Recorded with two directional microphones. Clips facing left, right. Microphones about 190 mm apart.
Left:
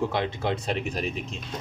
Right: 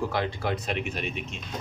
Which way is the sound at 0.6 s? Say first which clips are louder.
Left 2 dB; 35° left (ahead or behind).